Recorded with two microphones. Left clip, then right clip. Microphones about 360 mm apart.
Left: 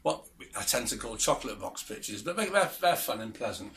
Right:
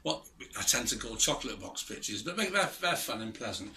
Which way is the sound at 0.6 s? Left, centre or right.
Centre.